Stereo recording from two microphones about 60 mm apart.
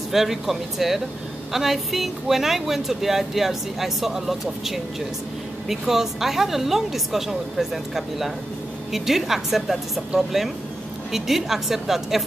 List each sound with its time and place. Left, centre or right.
0.1 s speech: centre